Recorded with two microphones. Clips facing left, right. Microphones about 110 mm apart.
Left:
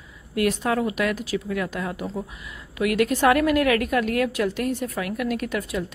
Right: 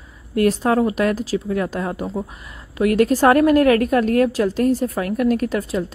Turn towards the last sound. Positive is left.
turn(degrees=-35)  # may be behind; listen again after turning